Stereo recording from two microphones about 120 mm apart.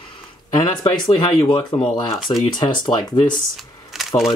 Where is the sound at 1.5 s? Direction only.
40° left (ahead or behind).